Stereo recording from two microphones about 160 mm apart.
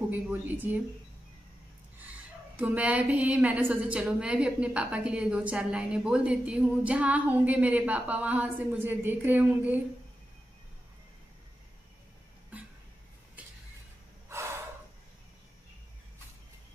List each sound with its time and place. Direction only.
0.1 s a woman's voice: 10° right (ahead or behind)
2.6 s a woman's voice: 10° right (ahead or behind)
13.4 s a sound: 10° right (ahead or behind)
14.3 s gasp: 15° right (ahead or behind)